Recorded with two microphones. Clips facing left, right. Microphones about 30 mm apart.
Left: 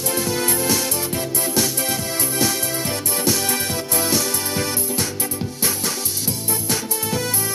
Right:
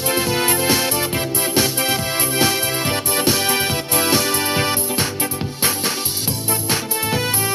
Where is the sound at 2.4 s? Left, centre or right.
Right.